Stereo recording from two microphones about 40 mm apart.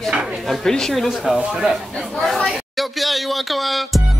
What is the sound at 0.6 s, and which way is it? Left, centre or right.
Speech, centre.